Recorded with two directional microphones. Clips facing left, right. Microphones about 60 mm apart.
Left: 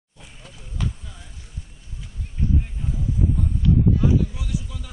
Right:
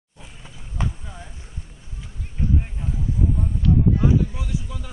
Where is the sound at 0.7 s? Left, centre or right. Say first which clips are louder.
Right 1 dB; right.